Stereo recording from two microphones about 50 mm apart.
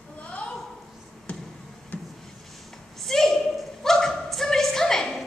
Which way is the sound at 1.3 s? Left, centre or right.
Left.